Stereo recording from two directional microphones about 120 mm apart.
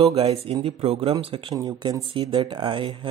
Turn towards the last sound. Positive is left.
turn(degrees=-45)  # may be behind; listen again after turning